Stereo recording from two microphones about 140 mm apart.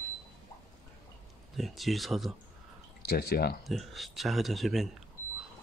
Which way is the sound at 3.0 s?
90° left.